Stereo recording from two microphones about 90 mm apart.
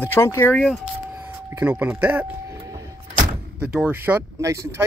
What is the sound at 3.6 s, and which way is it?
Speech, 10° right (ahead or behind).